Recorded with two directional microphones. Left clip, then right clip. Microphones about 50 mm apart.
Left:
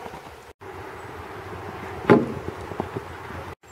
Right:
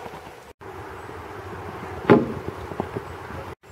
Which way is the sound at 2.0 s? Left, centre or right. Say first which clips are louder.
Right 1 dB; centre.